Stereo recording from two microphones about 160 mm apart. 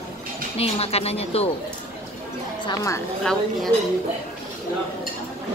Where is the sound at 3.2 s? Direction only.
5° left (ahead or behind).